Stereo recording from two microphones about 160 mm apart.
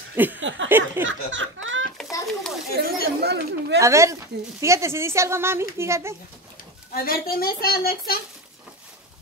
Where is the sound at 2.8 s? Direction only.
90° right.